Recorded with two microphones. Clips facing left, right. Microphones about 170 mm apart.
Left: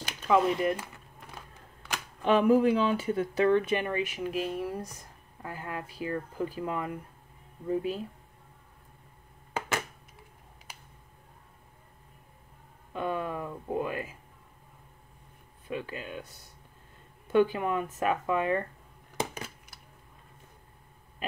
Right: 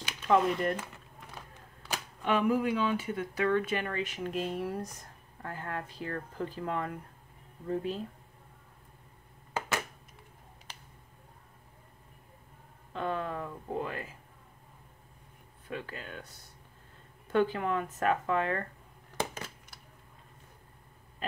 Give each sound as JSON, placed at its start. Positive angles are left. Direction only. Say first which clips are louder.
{"t": 0.3, "sound": "speech", "louder": "left 2 dB", "side_deg": 5}
{"t": 2.2, "sound": "speech", "louder": "left 6 dB", "side_deg": 30}
{"t": 12.9, "sound": "a sound", "louder": "left 2 dB", "side_deg": 10}
{"t": 15.7, "sound": "speech", "louder": "left 4 dB", "side_deg": 15}
{"t": 17.3, "sound": "speech", "louder": "left 3 dB", "side_deg": 15}